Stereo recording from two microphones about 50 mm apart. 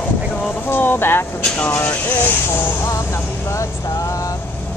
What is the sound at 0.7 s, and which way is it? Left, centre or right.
Speech, left.